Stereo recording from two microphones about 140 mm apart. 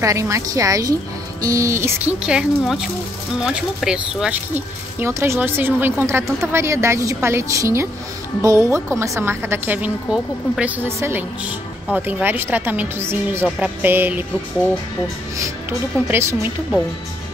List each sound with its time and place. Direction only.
0.0 s a woman's voice: 20° right (ahead or behind)
2.2 s a woman's voice: 5° right (ahead or behind)
16.1 s a woman's voice: 20° right (ahead or behind)